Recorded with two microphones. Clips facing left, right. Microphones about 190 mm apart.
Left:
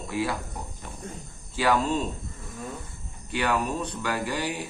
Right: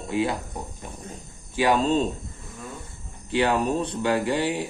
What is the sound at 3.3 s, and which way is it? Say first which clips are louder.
Speech: right 4 dB; 25° right (ahead or behind).